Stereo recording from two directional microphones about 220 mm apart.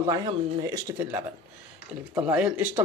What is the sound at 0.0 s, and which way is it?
Speech, 15° right (ahead or behind).